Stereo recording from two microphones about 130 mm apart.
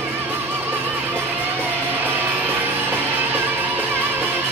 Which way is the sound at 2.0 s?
15° right (ahead or behind).